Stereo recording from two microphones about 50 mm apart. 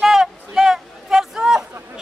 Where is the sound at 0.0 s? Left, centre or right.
Centre.